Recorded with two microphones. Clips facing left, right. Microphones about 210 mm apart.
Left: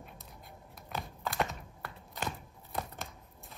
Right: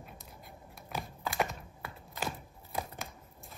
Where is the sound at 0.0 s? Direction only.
Centre (ahead or behind).